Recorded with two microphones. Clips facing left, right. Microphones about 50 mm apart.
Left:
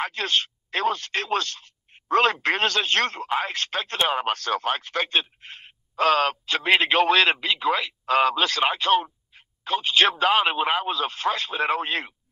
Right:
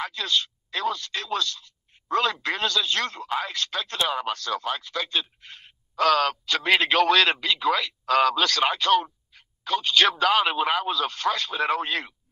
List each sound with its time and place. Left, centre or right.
0.0 s speech: left
3.3 s speech: left
4.4 s speech: left